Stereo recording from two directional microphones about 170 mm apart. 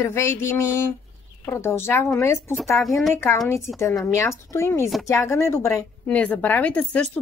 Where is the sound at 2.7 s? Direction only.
Centre (ahead or behind).